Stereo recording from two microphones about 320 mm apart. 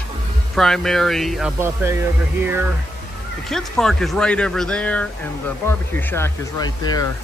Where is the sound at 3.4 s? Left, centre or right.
Centre.